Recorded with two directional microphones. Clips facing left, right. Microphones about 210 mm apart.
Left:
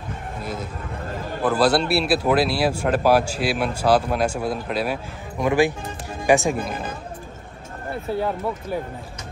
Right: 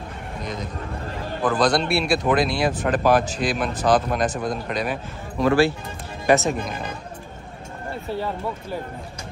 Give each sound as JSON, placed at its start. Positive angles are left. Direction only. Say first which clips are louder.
{"t": 0.4, "sound": "a sound", "louder": "even", "side_deg": 5}
{"t": 1.4, "sound": "speech", "louder": "left 1 dB", "side_deg": 5}
{"t": 5.4, "sound": "speech", "louder": "right 1 dB", "side_deg": 15}